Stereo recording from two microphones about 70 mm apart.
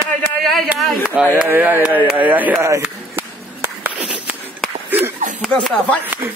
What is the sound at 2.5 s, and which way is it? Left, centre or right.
Speech, right.